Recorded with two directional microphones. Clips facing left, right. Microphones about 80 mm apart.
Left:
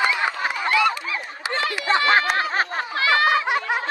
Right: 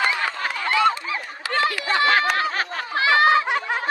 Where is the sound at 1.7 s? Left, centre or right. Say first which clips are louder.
Left 2 dB; left.